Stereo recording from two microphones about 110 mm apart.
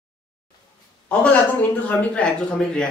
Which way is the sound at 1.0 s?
15° left (ahead or behind).